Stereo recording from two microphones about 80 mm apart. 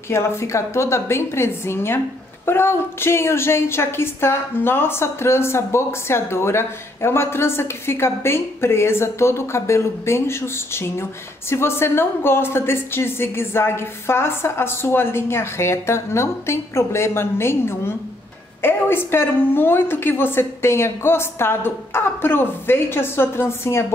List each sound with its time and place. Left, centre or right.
0.1 s a woman's voice: left